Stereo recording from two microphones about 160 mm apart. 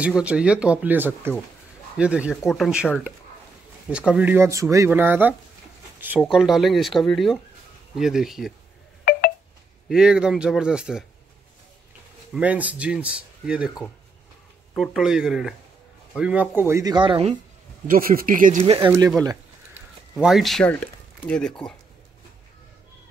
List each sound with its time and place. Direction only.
0.0 s speech: 5° right (ahead or behind)
3.9 s speech: 5° right (ahead or behind)
9.8 s speech: 5° right (ahead or behind)
12.3 s speech: 10° right (ahead or behind)
14.8 s speech: 5° right (ahead or behind); by 17.3 s 30° right (ahead or behind)
17.8 s speech: 65° right (ahead or behind)
18.6 s speech: 35° right (ahead or behind)
18.9 s speech: 20° right (ahead or behind)
20.2 s speech: centre (ahead or behind)